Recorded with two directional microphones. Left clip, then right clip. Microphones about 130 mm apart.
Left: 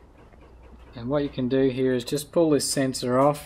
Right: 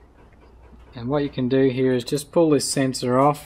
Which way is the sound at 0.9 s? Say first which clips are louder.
Right 2 dB; 50° right (ahead or behind).